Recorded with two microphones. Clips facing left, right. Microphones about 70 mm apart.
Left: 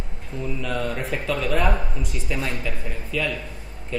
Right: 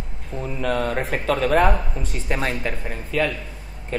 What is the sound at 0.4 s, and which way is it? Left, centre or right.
Speech, right.